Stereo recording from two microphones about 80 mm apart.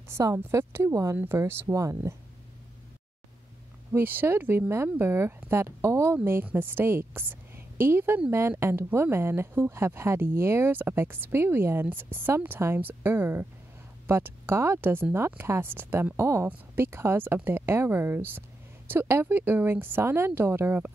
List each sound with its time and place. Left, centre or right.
0.1 s speech: right
1.1 s speech: right
1.4 s speech: right
3.9 s a woman's voice: right